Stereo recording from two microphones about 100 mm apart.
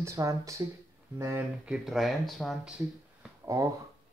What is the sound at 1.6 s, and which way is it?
Speech, 10° right (ahead or behind).